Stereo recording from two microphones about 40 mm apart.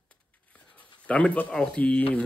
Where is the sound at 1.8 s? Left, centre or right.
Left.